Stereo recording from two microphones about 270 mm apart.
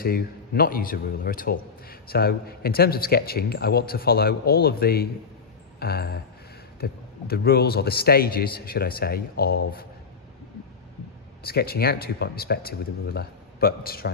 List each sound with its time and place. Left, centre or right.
0.0 s a man's voice: left
11.4 s a man's voice: left